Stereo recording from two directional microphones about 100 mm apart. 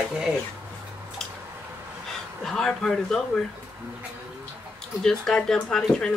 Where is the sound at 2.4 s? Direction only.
5° left (ahead or behind).